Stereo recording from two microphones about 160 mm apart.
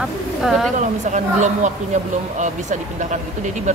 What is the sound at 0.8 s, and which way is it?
Speech, 50° right (ahead or behind).